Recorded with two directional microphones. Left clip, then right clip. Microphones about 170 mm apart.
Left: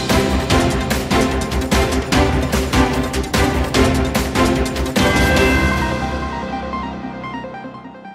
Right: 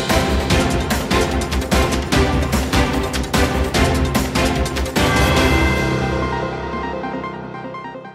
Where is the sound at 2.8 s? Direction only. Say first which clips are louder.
Left 2 dB; centre (ahead or behind).